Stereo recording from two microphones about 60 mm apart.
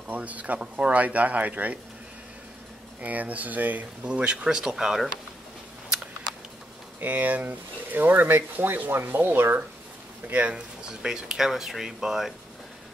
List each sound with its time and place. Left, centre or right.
0.1 s speech: right
3.0 s speech: right
4.0 s speech: centre
7.0 s speech: right
10.2 s speech: right
10.5 s speech: centre